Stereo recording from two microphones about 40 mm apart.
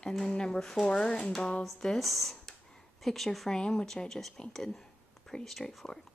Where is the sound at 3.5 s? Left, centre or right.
Centre.